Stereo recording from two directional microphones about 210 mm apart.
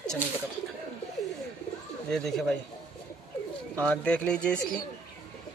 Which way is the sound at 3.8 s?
5° left (ahead or behind).